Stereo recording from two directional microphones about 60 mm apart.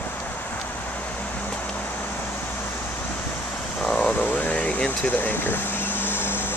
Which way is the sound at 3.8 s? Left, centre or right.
Left.